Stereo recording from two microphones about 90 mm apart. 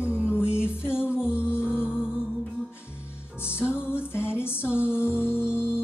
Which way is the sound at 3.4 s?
25° left (ahead or behind).